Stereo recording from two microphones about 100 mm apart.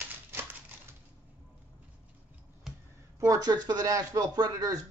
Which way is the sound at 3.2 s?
40° right (ahead or behind).